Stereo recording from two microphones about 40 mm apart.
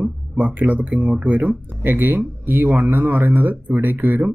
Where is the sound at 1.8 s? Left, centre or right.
Right.